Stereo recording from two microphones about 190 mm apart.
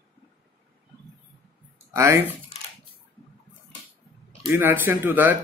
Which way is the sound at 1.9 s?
15° right (ahead or behind).